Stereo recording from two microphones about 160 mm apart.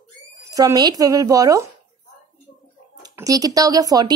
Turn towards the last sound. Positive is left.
turn(degrees=-25)  # may be behind; listen again after turning